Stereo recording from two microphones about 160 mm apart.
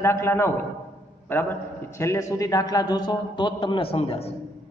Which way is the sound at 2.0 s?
20° left (ahead or behind).